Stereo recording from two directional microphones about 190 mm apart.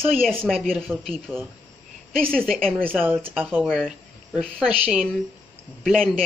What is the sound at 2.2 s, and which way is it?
Speech, 5° left (ahead or behind).